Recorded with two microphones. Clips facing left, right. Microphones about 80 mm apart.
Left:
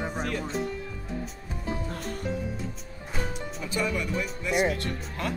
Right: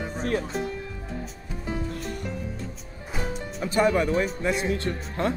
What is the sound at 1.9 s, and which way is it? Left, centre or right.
Music, left.